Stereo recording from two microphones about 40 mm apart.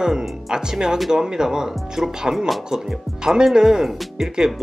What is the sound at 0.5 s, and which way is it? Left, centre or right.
Speech, centre.